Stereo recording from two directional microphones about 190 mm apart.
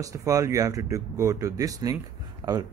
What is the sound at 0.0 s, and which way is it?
Speech, 15° right (ahead or behind).